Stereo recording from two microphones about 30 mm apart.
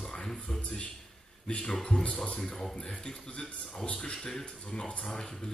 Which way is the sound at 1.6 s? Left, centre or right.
Centre.